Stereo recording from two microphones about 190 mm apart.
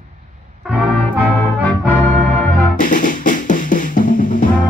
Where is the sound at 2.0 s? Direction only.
10° left (ahead or behind).